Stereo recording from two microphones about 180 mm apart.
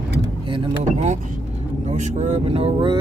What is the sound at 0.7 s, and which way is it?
Speech, 40° right (ahead or behind).